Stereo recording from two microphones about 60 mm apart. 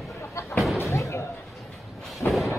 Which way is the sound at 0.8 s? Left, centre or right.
Left.